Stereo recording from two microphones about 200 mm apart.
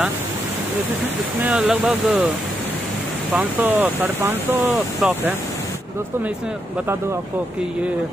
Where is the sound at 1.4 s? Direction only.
5° right (ahead or behind).